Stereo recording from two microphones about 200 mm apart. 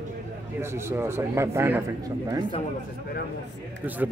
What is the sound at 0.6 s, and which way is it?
A man's voice, 10° right (ahead or behind).